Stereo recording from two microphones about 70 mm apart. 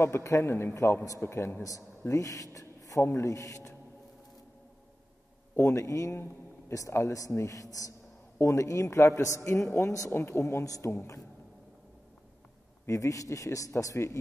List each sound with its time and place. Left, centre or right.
0.0 s a man's voice: left
3.0 s a man's voice: left
5.6 s a man's voice: left
12.8 s a man's voice: left